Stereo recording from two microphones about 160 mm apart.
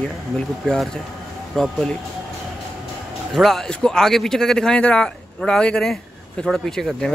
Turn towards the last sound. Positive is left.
turn(degrees=5)  # may be behind; listen again after turning